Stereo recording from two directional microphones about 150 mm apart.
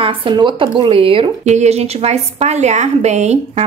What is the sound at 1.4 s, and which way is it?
A woman's voice, 50° right (ahead or behind).